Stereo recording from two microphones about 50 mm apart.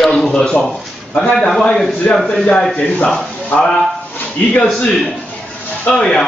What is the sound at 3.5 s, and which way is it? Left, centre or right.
Speech, left.